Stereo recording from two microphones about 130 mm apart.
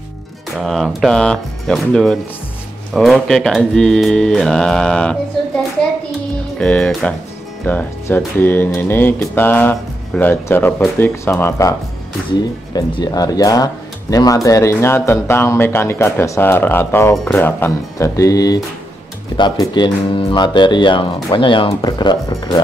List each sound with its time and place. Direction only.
0.6 s speech: centre (ahead or behind)
6.6 s speech: 10° left (ahead or behind)
12.7 s speech: 30° left (ahead or behind)